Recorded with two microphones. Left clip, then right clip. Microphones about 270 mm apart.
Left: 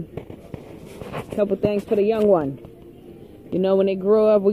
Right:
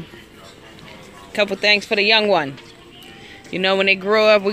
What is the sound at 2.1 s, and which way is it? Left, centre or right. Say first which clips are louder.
Speech: right 2 dB; centre.